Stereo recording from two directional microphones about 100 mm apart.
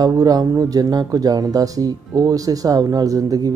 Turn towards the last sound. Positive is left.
turn(degrees=-40)  # may be behind; listen again after turning